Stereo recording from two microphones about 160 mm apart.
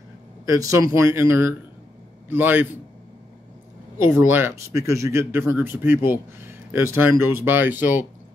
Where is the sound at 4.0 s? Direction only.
15° right (ahead or behind).